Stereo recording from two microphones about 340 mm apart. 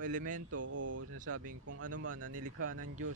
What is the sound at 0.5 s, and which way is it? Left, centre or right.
Speech, right.